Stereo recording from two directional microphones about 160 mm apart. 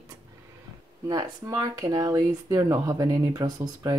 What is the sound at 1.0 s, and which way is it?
Speech, 25° right (ahead or behind).